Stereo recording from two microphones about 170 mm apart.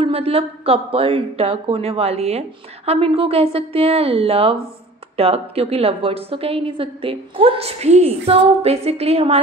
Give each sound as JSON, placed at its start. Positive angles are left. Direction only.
{"t": 0.0, "sound": "a woman's voice", "side_deg": -35}